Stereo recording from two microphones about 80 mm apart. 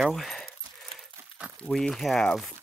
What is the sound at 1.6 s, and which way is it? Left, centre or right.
Speech, centre.